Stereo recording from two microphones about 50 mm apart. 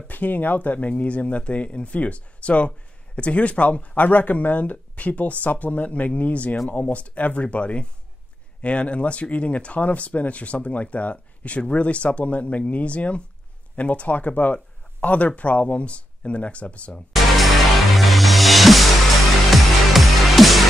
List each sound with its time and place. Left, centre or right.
0.1 s speech: left
17.1 s music: centre